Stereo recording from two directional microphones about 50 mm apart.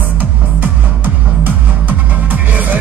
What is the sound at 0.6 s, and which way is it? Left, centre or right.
Music, right.